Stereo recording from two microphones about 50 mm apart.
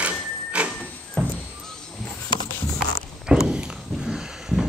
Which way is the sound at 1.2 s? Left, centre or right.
Left.